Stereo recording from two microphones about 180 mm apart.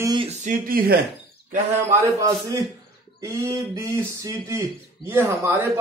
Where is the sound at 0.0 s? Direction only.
25° right (ahead or behind).